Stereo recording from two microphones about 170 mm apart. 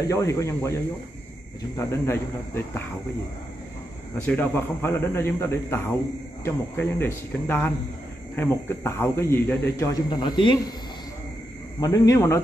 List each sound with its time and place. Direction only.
0.1 s a man's voice: 20° left (ahead or behind)
1.8 s a man's voice: 15° left (ahead or behind)
4.3 s a man's voice: 10° left (ahead or behind)
11.8 s a man's voice: 20° left (ahead or behind)